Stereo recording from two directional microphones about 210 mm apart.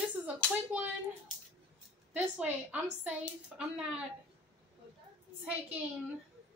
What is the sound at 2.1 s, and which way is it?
A woman's voice, 5° right (ahead or behind).